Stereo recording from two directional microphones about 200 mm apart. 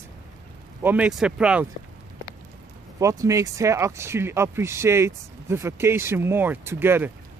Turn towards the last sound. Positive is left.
turn(degrees=-10)  # may be behind; listen again after turning